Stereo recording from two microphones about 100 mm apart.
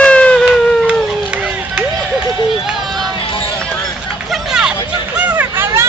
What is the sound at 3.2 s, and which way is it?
Run, 60° left (ahead or behind).